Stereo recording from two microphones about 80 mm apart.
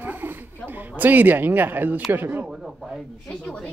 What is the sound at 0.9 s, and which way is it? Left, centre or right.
Speech, right.